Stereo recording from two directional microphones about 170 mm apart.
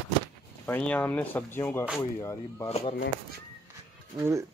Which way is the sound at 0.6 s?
10° left (ahead or behind).